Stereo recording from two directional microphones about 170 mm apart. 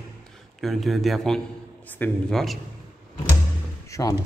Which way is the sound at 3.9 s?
20° left (ahead or behind).